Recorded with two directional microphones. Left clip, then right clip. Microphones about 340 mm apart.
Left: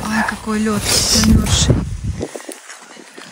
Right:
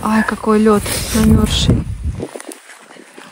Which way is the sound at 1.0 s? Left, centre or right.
Centre.